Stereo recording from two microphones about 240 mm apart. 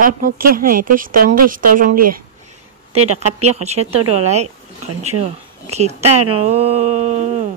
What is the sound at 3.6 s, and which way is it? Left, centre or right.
Speech, right.